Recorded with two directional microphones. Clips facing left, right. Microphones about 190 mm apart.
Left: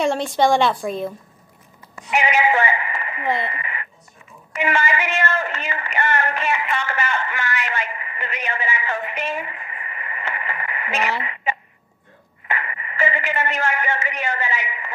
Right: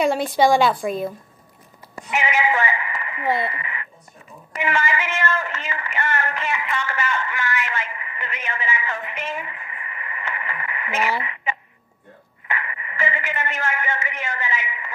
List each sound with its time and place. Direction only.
0.0 s a woman's voice: 5° right (ahead or behind)
2.2 s a sound: 30° left (ahead or behind)
3.3 s speech: 20° left (ahead or behind)
4.6 s a woman's voice: 25° left (ahead or behind)
12.4 s speech: 30° left (ahead or behind)